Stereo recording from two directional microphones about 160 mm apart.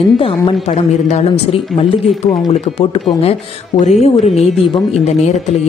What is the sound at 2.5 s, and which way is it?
A woman's voice, 40° left (ahead or behind).